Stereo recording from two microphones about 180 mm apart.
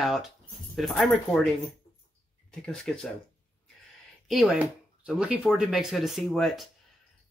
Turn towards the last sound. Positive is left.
turn(degrees=0)  # may be behind; listen again after turning